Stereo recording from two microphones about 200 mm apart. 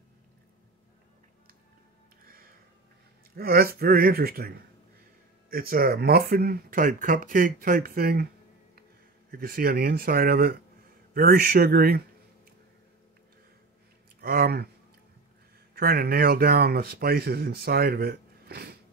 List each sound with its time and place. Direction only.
3.3 s speech: 50° right (ahead or behind)
5.5 s speech: 45° right (ahead or behind)
9.3 s speech: 50° right (ahead or behind)
14.2 s speech: 50° right (ahead or behind)
15.7 s speech: 50° right (ahead or behind)